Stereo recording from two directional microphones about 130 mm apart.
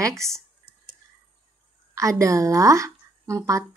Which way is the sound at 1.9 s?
25° right (ahead or behind).